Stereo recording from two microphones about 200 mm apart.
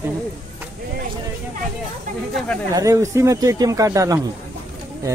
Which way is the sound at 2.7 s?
15° right (ahead or behind).